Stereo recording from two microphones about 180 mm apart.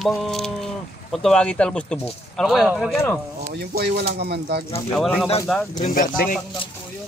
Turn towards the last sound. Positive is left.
turn(degrees=50)  # may be behind; listen again after turning